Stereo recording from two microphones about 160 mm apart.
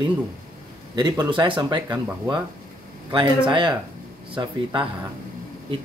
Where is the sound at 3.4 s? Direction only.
30° right (ahead or behind).